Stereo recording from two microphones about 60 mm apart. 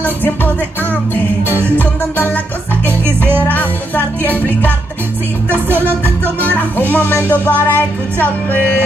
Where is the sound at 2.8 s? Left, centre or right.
Right.